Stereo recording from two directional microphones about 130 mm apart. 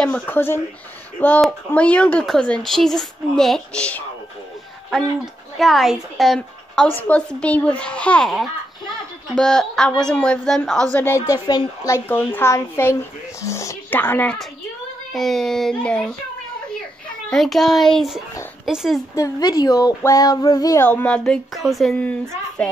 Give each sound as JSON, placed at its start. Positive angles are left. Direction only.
{"t": 0.0, "sound": "a woman's voice", "side_deg": 15}
{"t": 15.1, "sound": "speech", "side_deg": 0}
{"t": 17.3, "sound": "speech", "side_deg": 0}
{"t": 19.1, "sound": "a child's voice", "side_deg": 25}
{"t": 20.8, "sound": "a woman's voice", "side_deg": 10}